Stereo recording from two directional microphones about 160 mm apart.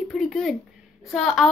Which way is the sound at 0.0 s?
Centre (ahead or behind).